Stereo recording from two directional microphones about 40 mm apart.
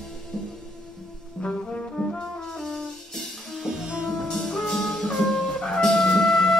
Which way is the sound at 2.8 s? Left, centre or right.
Centre.